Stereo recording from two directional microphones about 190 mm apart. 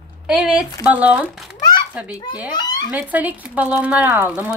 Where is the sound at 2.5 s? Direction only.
20° left (ahead or behind).